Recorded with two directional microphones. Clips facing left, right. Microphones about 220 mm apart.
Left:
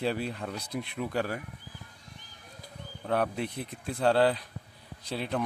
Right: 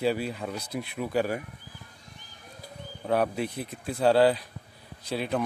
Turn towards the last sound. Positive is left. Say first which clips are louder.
# right 3 dB
turn(degrees=-5)  # may be behind; listen again after turning